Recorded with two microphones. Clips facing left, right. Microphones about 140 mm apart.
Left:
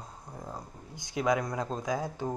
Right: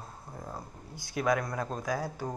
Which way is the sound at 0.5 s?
15° left (ahead or behind).